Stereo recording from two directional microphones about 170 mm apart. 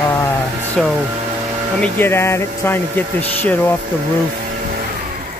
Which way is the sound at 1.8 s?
15° left (ahead or behind).